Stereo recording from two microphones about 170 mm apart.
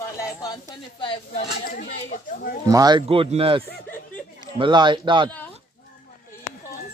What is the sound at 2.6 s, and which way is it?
Speech, 20° right (ahead or behind).